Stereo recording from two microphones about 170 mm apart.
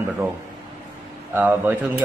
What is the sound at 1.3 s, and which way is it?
Speech, 10° right (ahead or behind).